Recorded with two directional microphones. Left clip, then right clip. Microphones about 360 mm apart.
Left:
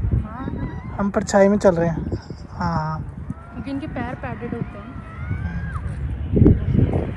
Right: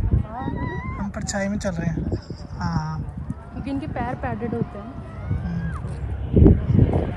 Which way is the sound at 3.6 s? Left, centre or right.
Right.